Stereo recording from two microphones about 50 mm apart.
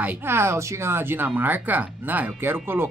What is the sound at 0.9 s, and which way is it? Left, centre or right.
Speech, right.